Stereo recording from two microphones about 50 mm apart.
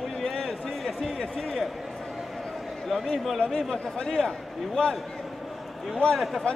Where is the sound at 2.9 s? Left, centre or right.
Centre.